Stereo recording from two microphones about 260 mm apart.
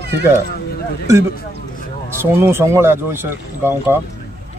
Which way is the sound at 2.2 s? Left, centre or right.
Centre.